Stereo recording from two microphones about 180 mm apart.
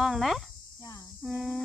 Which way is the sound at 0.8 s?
20° left (ahead or behind).